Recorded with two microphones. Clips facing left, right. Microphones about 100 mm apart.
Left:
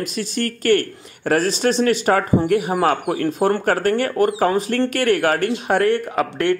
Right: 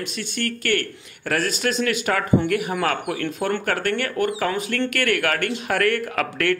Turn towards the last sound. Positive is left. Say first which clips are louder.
# left 3 dB
turn(degrees=20)  # may be behind; listen again after turning